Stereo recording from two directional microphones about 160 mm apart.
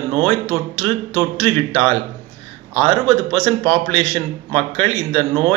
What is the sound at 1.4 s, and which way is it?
Speech, 35° right (ahead or behind).